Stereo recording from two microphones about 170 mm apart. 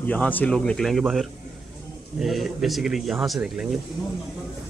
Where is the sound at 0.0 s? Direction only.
10° left (ahead or behind).